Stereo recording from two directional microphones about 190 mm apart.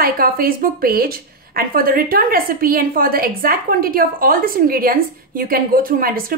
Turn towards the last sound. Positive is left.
turn(degrees=-50)  # may be behind; listen again after turning